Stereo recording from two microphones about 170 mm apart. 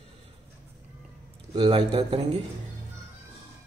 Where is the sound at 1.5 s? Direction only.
30° right (ahead or behind).